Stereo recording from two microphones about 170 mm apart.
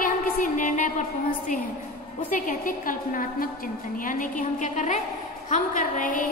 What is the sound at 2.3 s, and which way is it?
A woman's voice, 55° left (ahead or behind).